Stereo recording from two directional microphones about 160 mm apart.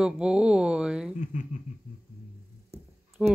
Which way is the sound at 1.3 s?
50° left (ahead or behind).